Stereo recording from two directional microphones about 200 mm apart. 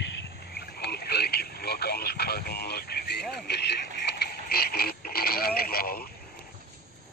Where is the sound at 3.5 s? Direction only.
55° left (ahead or behind).